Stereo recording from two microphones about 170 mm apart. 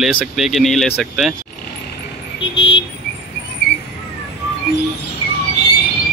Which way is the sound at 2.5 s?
90° left.